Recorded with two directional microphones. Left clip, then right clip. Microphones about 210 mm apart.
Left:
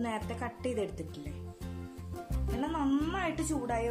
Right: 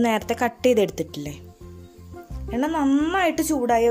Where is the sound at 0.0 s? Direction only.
40° right (ahead or behind).